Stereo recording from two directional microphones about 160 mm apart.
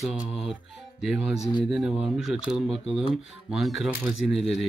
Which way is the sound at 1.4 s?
30° left (ahead or behind).